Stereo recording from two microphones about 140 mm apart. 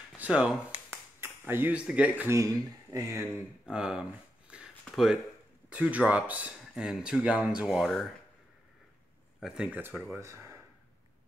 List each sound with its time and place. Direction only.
0.2 s speech: 5° right (ahead or behind); by 3.3 s 25° right (ahead or behind)
3.6 s speech: 5° right (ahead or behind)
4.5 s a sound: 10° right (ahead or behind)
4.8 s speech: centre (ahead or behind)
9.4 s speech: 5° right (ahead or behind)